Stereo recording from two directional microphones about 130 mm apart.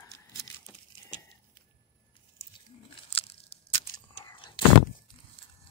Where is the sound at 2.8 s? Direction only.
45° left (ahead or behind).